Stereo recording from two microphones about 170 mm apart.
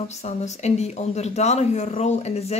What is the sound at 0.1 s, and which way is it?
Speech, 40° left (ahead or behind).